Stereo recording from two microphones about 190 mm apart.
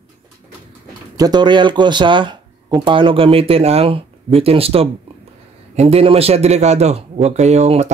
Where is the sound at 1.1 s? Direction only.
20° right (ahead or behind).